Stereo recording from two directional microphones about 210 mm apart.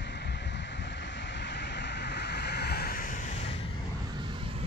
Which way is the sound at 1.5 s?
55° left (ahead or behind).